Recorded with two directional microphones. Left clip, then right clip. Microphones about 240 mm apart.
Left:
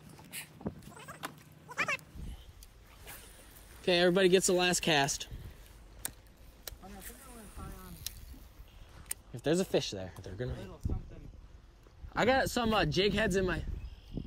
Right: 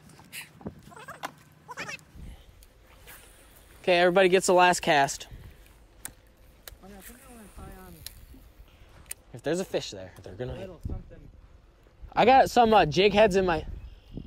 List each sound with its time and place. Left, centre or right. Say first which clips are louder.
0.3 s vehicle: right 2 dB; centre
0.8 s a sound: right 5 dB; centre
1.8 s dog: left 5 dB; centre
3.8 s speech: right 6 dB; centre
9.3 s speech: right 1 dB; centre
12.1 s a man's voice: right 10 dB; right